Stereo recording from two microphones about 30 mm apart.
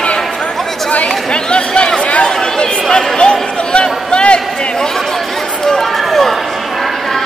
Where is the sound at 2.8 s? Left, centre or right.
Centre.